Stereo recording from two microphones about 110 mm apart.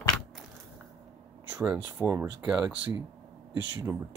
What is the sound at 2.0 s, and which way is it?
Speech, 10° left (ahead or behind).